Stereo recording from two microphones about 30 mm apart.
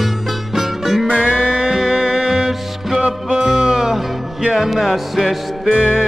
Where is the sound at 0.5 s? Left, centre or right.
Centre.